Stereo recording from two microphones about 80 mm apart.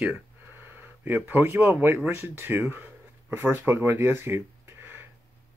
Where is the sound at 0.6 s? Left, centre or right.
Right.